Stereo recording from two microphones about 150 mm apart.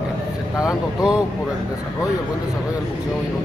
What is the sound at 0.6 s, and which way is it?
Speech, 5° right (ahead or behind).